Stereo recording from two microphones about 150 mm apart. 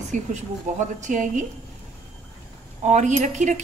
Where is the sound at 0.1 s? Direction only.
55° right (ahead or behind).